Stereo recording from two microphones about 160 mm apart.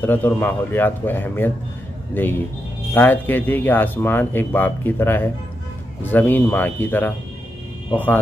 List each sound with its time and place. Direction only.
0.0 s a man's voice: 10° left (ahead or behind)